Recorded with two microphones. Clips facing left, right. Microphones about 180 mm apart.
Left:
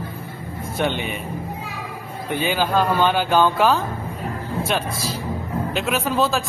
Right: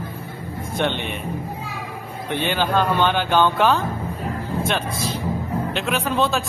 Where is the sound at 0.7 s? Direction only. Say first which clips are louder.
Even; 5° left (ahead or behind).